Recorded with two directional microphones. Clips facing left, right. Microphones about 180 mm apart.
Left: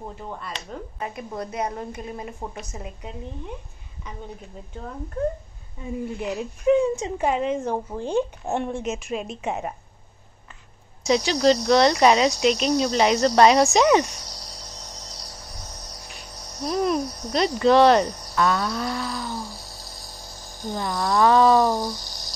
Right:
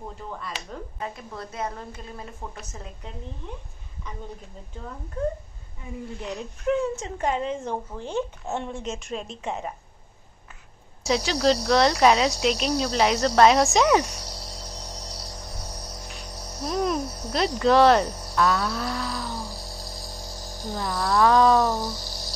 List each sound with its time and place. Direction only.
0.5 s speech: 10° right (ahead or behind)
1.0 s speech: 15° left (ahead or behind)
6.1 s speech: 10° left (ahead or behind)
11.1 s speech: 5° right (ahead or behind)
16.7 s speech: centre (ahead or behind)